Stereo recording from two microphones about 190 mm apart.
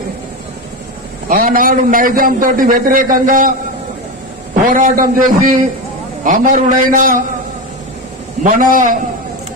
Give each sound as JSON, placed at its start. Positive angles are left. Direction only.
{"t": 1.3, "sound": "a man's voice", "side_deg": -45}
{"t": 4.6, "sound": "a man's voice", "side_deg": -45}
{"t": 8.5, "sound": "a man's voice", "side_deg": -45}